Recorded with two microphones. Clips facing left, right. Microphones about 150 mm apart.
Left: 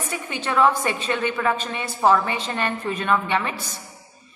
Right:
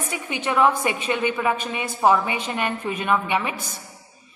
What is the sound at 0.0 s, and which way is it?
A woman's voice, 15° right (ahead or behind).